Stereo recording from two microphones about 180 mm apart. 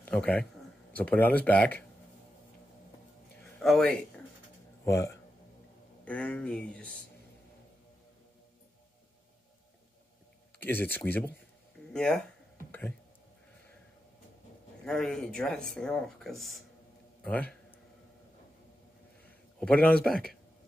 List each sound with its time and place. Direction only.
0.1 s a man's voice: 5° left (ahead or behind)
3.5 s speech: 5° left (ahead or behind)
4.8 s speech: 15° left (ahead or behind)
6.0 s speech: 5° left (ahead or behind)
10.6 s speech: 10° left (ahead or behind)
14.9 s speech: centre (ahead or behind)
19.6 s speech: 5° left (ahead or behind)